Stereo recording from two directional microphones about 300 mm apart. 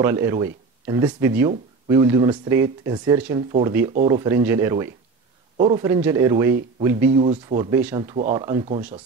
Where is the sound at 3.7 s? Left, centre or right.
Centre.